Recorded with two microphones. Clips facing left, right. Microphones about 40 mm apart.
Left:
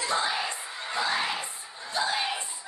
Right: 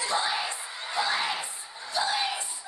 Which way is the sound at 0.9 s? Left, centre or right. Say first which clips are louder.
Even; left.